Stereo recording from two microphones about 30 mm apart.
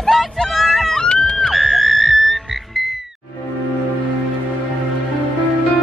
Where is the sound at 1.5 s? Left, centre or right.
Centre.